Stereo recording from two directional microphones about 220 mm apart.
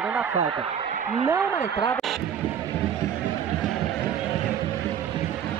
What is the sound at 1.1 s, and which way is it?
Speech, 15° right (ahead or behind).